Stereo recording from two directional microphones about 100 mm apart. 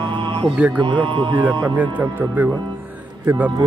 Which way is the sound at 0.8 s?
50° right (ahead or behind).